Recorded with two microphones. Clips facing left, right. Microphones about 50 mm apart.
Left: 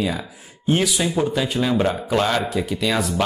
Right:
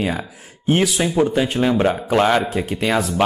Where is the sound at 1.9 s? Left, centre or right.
Right.